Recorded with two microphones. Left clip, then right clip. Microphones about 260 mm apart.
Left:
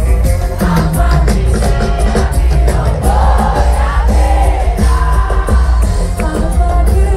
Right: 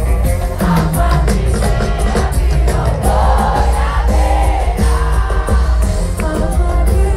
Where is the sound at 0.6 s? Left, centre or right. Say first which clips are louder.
Left 1 dB; right.